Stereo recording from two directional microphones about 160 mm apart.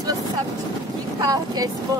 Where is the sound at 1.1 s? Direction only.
25° right (ahead or behind).